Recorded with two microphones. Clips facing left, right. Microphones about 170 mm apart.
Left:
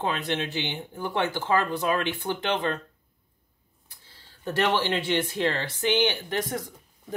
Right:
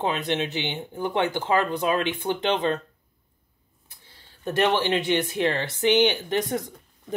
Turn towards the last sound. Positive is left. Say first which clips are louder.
# right 4 dB
turn(degrees=-20)  # may be behind; listen again after turning